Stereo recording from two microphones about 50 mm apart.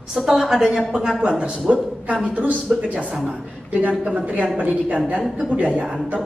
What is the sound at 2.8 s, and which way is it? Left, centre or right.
A woman's voice, right.